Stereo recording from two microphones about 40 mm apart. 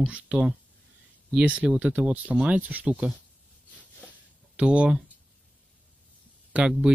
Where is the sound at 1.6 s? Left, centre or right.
Right.